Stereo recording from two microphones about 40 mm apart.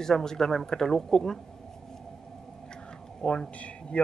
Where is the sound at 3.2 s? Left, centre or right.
Left.